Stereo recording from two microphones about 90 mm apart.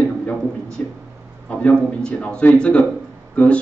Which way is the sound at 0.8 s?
20° left (ahead or behind).